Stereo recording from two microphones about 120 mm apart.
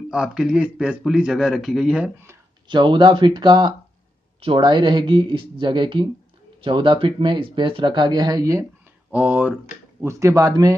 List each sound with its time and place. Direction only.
0.1 s speech: 5° right (ahead or behind)
2.7 s speech: 40° right (ahead or behind)
9.1 s speech: 10° right (ahead or behind)
10.0 s speech: 25° right (ahead or behind)